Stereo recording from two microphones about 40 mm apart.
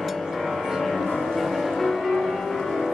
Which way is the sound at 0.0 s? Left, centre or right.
Centre.